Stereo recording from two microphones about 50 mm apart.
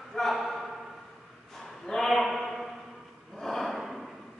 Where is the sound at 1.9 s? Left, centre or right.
Centre.